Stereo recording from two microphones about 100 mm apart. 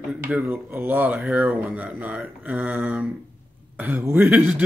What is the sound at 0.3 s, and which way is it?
Speech, 20° right (ahead or behind).